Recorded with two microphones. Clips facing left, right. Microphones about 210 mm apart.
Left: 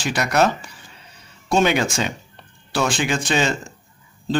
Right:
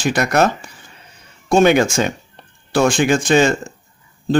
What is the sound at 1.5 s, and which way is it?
Speech, 50° right (ahead or behind).